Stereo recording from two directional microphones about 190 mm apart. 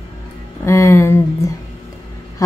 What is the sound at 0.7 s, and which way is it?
Speech, 15° left (ahead or behind).